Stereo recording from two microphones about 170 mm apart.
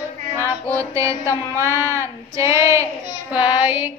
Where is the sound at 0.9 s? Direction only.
15° right (ahead or behind).